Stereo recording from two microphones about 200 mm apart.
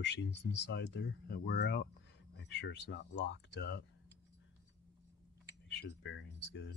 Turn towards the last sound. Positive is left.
turn(degrees=65)  # may be behind; listen again after turning